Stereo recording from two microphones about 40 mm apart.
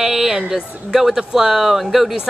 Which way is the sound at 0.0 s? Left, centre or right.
Centre.